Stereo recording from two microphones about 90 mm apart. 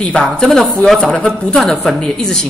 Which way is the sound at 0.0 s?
10° left (ahead or behind).